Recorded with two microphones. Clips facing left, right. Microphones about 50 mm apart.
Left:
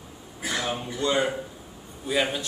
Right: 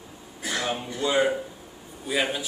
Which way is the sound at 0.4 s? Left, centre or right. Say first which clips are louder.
Even; left.